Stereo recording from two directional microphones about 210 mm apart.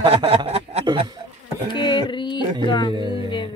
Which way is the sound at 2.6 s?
20° left (ahead or behind).